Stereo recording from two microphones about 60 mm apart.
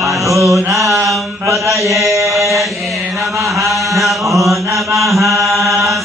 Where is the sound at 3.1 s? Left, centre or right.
Right.